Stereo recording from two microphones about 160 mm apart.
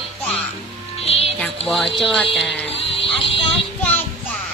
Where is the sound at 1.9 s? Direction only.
Centre (ahead or behind).